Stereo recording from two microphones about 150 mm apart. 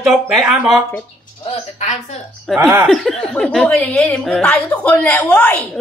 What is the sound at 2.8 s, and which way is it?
A woman's voice, centre (ahead or behind).